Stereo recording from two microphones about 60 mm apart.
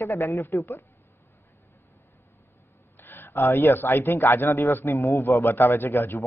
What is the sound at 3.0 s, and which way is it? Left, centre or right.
Speech, left.